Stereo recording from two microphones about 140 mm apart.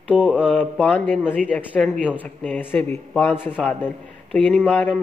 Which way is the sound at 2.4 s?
10° left (ahead or behind).